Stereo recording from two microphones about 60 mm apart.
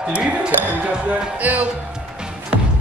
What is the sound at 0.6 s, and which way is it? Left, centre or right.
Music, right.